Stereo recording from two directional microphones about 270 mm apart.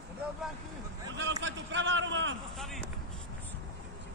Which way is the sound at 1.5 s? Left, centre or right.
Right.